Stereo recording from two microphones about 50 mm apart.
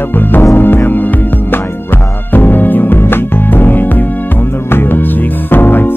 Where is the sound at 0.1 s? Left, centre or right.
Left.